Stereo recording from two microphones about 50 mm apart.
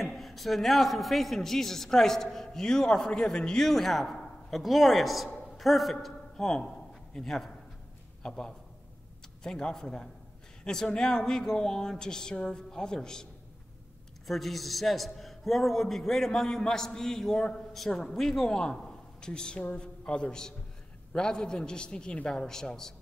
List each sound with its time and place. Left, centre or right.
0.0 s a man's voice: centre
3.6 s a man's voice: centre
14.2 s a man's voice: centre